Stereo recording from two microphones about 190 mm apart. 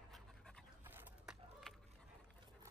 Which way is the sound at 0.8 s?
5° right (ahead or behind).